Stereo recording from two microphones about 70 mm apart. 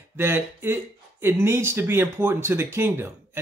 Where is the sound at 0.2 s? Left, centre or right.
Right.